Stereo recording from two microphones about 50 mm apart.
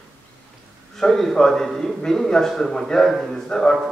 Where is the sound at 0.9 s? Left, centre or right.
Centre.